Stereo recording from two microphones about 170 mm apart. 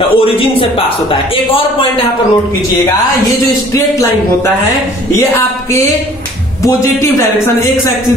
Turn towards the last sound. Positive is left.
turn(degrees=15)  # may be behind; listen again after turning